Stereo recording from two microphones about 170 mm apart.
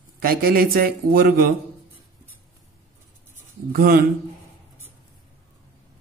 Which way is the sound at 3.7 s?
60° right (ahead or behind).